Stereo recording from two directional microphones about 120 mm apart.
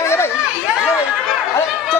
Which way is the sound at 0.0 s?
20° left (ahead or behind).